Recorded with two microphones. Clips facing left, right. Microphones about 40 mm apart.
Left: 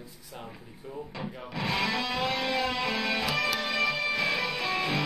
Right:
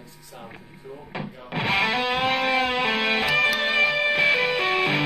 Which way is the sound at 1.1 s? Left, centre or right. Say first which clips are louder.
Right 7 dB; right.